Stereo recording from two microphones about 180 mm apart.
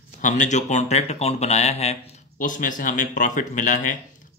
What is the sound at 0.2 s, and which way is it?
Speech, 40° left (ahead or behind).